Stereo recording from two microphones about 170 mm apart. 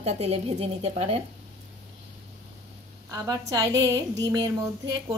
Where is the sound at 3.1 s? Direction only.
20° right (ahead or behind).